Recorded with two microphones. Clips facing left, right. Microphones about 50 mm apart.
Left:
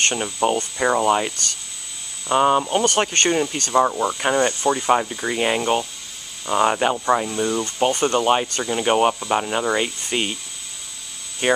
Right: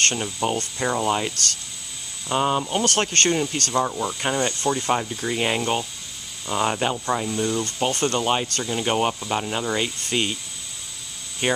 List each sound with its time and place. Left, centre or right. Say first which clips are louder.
0.0 s speech: left 3 dB; centre
3.8 s speech: left 5 dB; left
5.4 s speech: left 4 dB; centre
11.4 s speech: left 4 dB; centre